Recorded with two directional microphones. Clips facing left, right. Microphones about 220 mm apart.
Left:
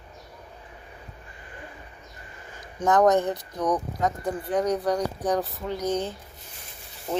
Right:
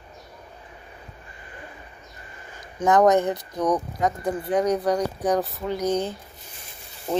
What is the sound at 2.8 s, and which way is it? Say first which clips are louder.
Speech: right 2 dB; 10° right (ahead or behind).